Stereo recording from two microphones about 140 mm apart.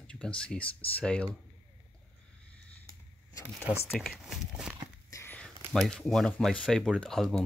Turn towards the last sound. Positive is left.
turn(degrees=0)  # may be behind; listen again after turning